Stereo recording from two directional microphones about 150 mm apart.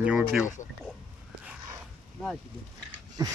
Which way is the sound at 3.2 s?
25° right (ahead or behind).